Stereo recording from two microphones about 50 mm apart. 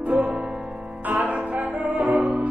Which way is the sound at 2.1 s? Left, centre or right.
Centre.